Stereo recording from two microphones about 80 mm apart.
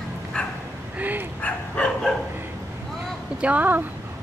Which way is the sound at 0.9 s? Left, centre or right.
Right.